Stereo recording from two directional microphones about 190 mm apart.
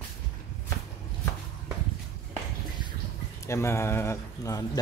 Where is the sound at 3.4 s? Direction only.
15° left (ahead or behind).